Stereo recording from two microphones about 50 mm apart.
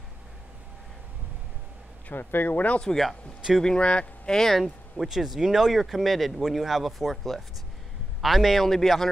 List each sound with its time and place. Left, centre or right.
2.1 s speech: left
3.6 s speech: centre
4.3 s speech: centre
4.9 s speech: centre